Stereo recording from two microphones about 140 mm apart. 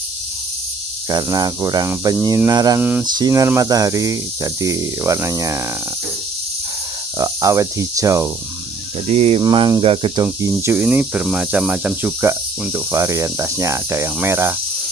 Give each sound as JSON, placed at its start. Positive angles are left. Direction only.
{"t": 1.0, "sound": "speech", "side_deg": -25}
{"t": 2.8, "sound": "cricket", "side_deg": -10}
{"t": 3.1, "sound": "speech", "side_deg": -25}
{"t": 7.2, "sound": "speech", "side_deg": -25}
{"t": 9.0, "sound": "speech", "side_deg": -45}
{"t": 9.4, "sound": "speech", "side_deg": -30}
{"t": 10.2, "sound": "cricket", "side_deg": -15}